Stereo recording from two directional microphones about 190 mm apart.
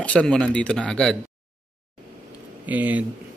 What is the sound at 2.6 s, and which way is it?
Speech, 10° right (ahead or behind).